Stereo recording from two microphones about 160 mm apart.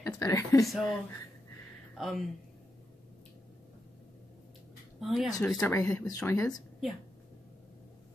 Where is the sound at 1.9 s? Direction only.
Centre (ahead or behind).